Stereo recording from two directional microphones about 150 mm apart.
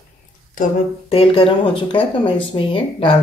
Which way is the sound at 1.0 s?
40° left (ahead or behind).